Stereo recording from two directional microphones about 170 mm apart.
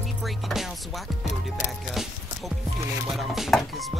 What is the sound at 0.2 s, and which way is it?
Music, centre (ahead or behind).